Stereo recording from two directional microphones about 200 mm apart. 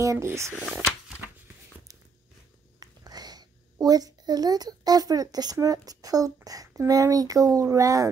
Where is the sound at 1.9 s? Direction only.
15° right (ahead or behind).